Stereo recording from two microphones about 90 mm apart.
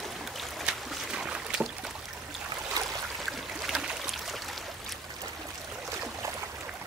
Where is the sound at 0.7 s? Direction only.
10° right (ahead or behind).